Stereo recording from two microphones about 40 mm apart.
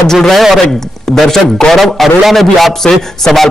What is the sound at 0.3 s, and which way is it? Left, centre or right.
Speech, centre.